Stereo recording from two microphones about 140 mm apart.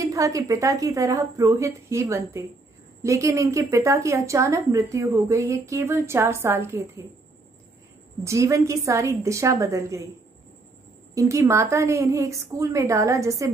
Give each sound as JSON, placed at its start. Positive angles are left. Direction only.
{"t": 0.0, "sound": "a woman's voice", "side_deg": -25}
{"t": 8.2, "sound": "a woman's voice", "side_deg": -20}
{"t": 11.1, "sound": "a woman's voice", "side_deg": -20}